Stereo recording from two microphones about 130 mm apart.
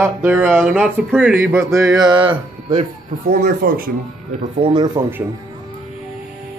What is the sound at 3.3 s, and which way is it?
Speech, 90° right.